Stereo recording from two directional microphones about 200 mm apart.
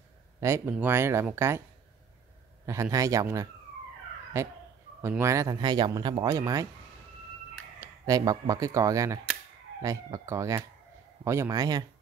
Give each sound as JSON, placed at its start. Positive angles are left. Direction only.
{"t": 0.4, "sound": "speech", "side_deg": -10}
{"t": 2.6, "sound": "speech", "side_deg": -15}
{"t": 7.8, "sound": "speech", "side_deg": -15}